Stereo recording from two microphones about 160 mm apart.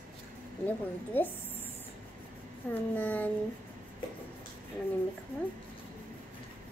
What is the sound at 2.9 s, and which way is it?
Speech, 10° left (ahead or behind).